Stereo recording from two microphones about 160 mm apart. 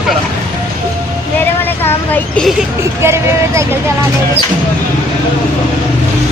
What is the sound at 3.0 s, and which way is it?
Speech, 15° right (ahead or behind).